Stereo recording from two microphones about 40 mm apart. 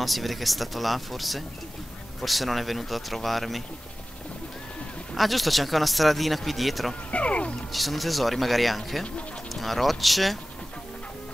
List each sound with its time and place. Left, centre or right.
0.0 s speech: centre
5.1 s speech: centre
7.1 s music: left
7.7 s speech: centre